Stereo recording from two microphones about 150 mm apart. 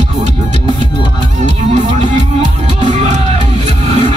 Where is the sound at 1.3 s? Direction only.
55° right (ahead or behind).